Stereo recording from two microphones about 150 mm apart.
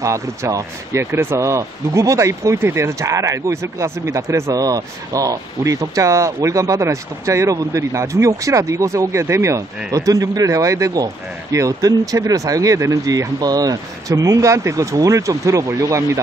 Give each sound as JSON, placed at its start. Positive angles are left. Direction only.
{"t": 0.0, "sound": "speech", "side_deg": -20}